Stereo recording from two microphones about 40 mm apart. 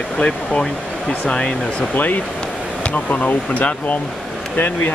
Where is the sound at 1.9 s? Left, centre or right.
Left.